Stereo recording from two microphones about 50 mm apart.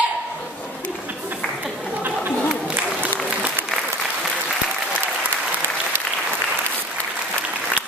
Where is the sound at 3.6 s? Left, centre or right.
Centre.